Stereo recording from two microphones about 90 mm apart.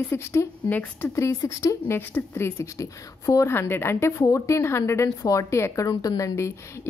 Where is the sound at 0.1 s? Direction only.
30° left (ahead or behind).